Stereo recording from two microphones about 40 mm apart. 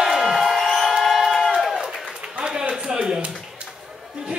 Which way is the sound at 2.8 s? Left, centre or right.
Right.